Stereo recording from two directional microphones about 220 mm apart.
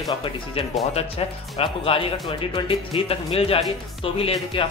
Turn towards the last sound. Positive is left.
turn(degrees=25)  # may be behind; listen again after turning